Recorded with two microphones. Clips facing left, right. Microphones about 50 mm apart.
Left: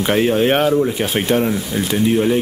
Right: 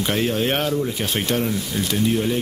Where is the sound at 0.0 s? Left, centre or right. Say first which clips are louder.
Left 6 dB; centre.